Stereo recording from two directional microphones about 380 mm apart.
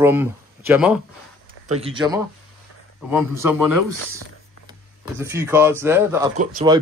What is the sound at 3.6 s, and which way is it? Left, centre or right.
Speech, right.